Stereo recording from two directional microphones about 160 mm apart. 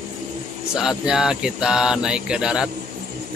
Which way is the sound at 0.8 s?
5° right (ahead or behind).